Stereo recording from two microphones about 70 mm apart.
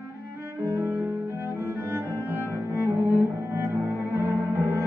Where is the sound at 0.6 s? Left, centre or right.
Right.